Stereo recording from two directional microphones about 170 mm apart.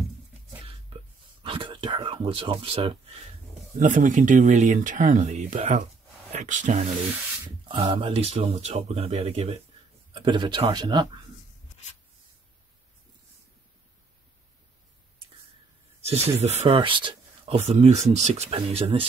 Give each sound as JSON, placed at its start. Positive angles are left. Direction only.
{"t": 1.4, "sound": "a sound", "side_deg": -30}
{"t": 3.8, "sound": "speech", "side_deg": -50}
{"t": 7.6, "sound": "speech", "side_deg": -30}
{"t": 16.0, "sound": "snake", "side_deg": -35}
{"t": 16.3, "sound": "speech", "side_deg": -40}